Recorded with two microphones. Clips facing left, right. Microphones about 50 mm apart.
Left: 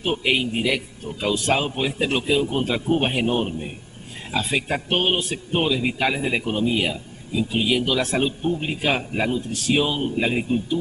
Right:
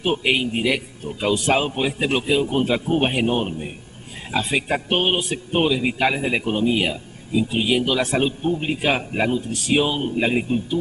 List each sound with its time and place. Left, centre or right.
0.0 s speech: centre